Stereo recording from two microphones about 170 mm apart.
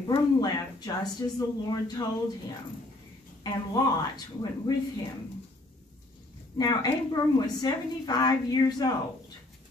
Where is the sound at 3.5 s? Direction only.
25° left (ahead or behind).